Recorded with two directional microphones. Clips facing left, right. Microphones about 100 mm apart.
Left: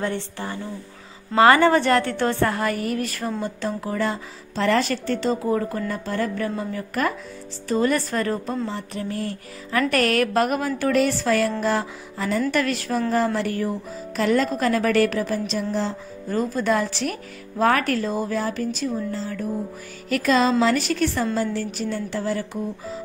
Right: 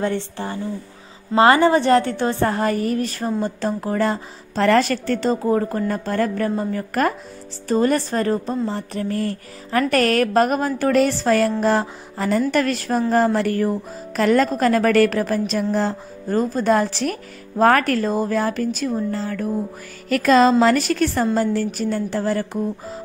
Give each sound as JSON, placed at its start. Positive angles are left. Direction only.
{"t": 0.0, "sound": "a woman's voice", "side_deg": -30}
{"t": 3.4, "sound": "a woman's voice", "side_deg": -40}